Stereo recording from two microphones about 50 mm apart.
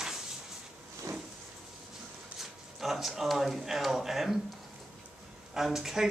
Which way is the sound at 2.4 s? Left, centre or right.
Centre.